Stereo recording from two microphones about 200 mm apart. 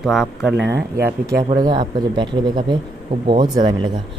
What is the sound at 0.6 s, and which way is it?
Speech, 60° right (ahead or behind).